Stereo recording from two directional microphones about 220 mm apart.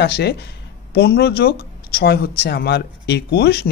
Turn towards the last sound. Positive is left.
turn(degrees=45)  # may be behind; listen again after turning